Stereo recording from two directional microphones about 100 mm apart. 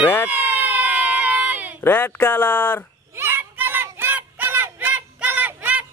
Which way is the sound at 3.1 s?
25° right (ahead or behind).